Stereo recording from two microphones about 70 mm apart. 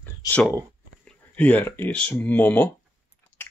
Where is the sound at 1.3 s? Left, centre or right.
Left.